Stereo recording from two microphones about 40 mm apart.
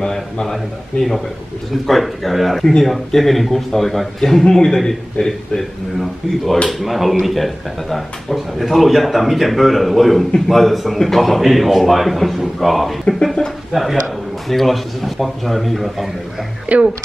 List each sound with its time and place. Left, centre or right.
0.0 s a man's voice: centre
1.9 s a man's voice: centre
4.5 s a man's voice: centre
5.9 s a man's voice: centre
14.5 s a man's voice: centre
16.7 s speech: right